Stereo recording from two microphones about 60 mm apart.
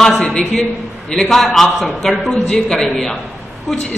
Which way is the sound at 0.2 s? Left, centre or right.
Centre.